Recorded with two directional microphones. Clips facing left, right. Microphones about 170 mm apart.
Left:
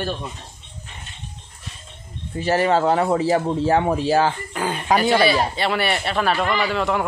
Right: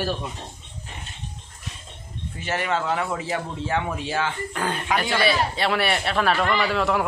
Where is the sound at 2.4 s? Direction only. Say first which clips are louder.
Left 8 dB; 35° left (ahead or behind).